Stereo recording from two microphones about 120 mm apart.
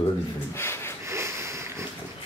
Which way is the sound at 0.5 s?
20° left (ahead or behind).